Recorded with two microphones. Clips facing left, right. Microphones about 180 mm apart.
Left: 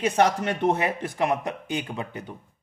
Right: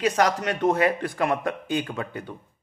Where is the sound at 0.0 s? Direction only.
25° left (ahead or behind).